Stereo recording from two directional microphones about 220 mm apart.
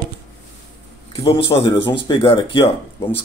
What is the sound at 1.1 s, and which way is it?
Speech, 25° left (ahead or behind).